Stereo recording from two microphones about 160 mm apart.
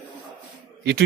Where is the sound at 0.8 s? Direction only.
90° right.